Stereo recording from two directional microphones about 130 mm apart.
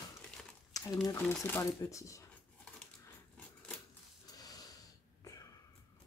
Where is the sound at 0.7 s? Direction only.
25° left (ahead or behind).